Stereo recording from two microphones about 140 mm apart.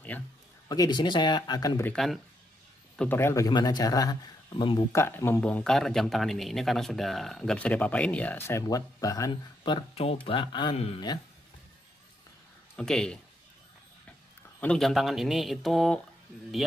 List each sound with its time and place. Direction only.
0.7 s speech: 30° left (ahead or behind)
2.0 s speech: 5° left (ahead or behind)
3.0 s a man's voice: 15° left (ahead or behind); by 4.8 s 35° left (ahead or behind)
4.9 s speech: 15° left (ahead or behind)
9.6 s speech: 35° left (ahead or behind)
12.7 s speech: 5° left (ahead or behind)
14.6 s speech: 5° left (ahead or behind)